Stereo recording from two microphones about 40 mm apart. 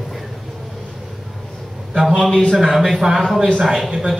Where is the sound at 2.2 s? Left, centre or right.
Centre.